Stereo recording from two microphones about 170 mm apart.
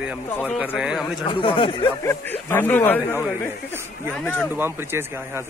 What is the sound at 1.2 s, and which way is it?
Speech, 30° left (ahead or behind).